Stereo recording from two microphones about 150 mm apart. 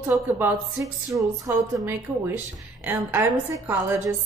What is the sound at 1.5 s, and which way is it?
A woman's voice, 15° right (ahead or behind).